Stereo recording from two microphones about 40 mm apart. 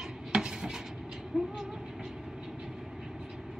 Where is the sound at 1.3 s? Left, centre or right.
Centre.